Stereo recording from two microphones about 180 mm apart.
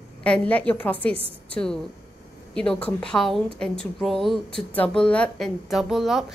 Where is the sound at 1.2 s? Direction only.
30° right (ahead or behind).